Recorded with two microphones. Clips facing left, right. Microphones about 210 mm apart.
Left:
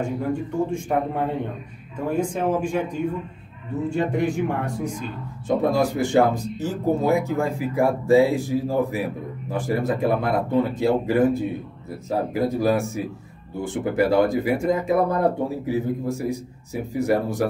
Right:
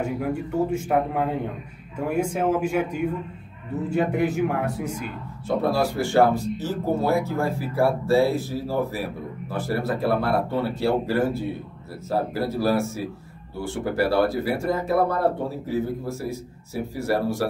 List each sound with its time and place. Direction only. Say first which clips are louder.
0.0 s a man's voice: left 1 dB; 10° right (ahead or behind)
5.5 s speech: left 2 dB; 15° left (ahead or behind)